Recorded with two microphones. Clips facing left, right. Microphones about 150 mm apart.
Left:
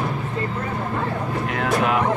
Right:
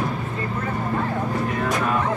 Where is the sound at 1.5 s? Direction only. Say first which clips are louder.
Left 2 dB; 90° left.